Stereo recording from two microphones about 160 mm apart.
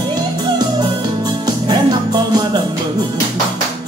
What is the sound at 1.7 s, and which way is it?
Music, 25° right (ahead or behind).